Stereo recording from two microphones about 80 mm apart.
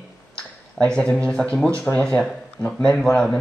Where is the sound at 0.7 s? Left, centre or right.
Centre.